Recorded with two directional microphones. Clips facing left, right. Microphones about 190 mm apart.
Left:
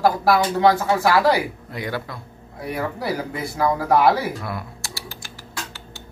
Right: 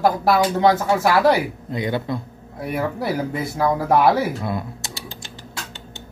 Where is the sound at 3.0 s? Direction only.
25° right (ahead or behind).